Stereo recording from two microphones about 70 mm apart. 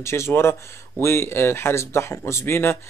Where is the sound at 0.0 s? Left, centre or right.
Left.